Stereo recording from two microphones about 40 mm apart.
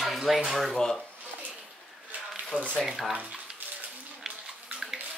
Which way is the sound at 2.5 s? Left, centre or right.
Left.